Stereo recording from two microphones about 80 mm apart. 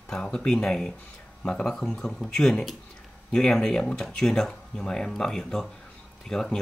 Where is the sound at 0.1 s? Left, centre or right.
Centre.